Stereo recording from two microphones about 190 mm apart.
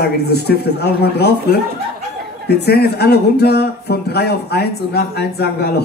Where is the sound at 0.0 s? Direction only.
55° left (ahead or behind).